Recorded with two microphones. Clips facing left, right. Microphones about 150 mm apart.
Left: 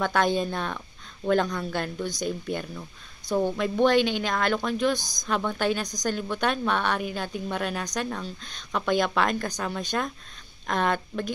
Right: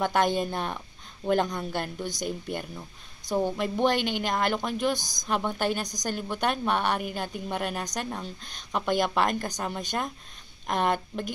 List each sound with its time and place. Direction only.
0.0 s a woman's voice: 15° right (ahead or behind)